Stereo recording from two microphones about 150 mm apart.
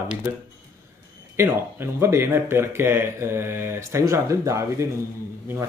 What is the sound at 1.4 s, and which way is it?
Speech, 15° right (ahead or behind).